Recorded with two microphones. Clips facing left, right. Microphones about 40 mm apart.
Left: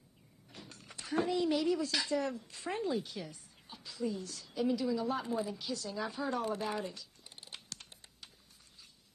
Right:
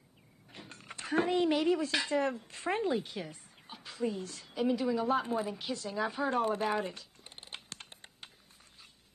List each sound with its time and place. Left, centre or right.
0.5 s speech: right